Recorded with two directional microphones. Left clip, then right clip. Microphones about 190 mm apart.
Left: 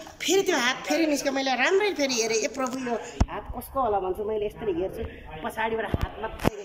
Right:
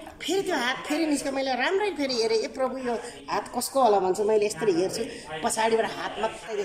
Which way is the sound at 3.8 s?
20° right (ahead or behind).